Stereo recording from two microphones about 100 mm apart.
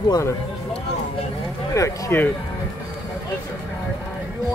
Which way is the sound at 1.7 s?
30° left (ahead or behind).